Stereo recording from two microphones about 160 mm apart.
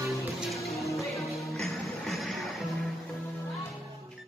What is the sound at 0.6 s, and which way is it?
Music, centre (ahead or behind).